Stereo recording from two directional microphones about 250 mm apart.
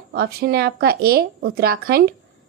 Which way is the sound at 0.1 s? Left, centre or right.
Right.